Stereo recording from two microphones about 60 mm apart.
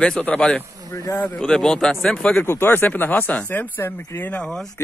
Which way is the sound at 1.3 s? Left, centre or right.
Centre.